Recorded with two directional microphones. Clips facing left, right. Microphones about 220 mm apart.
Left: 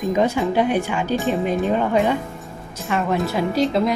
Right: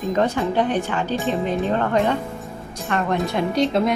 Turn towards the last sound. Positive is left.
turn(degrees=0)  # may be behind; listen again after turning